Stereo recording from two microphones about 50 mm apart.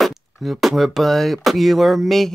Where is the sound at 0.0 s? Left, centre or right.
Centre.